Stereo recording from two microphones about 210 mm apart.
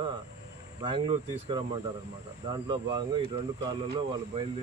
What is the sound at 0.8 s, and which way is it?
Speech, 20° right (ahead or behind).